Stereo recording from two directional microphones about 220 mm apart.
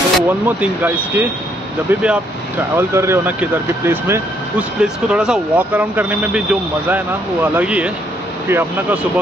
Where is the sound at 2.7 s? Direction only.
10° right (ahead or behind).